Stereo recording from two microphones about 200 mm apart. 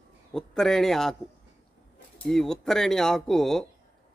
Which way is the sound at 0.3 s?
Centre (ahead or behind).